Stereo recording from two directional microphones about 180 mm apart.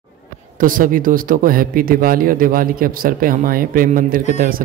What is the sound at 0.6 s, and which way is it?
Speech, 50° right (ahead or behind).